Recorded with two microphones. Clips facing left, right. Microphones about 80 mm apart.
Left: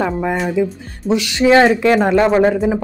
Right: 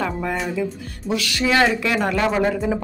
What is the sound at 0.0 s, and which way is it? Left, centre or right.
Speech, left.